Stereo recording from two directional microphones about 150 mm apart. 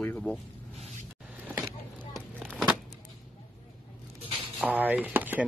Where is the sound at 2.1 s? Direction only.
Centre (ahead or behind).